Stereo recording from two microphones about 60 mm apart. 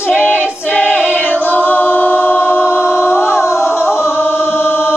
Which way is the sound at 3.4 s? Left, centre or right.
Left.